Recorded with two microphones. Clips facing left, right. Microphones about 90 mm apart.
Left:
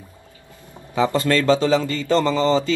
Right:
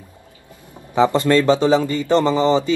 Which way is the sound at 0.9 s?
25° right (ahead or behind).